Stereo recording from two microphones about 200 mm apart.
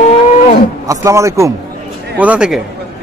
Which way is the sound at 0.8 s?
15° right (ahead or behind).